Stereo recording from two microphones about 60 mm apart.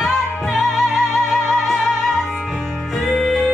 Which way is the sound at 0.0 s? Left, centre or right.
Centre.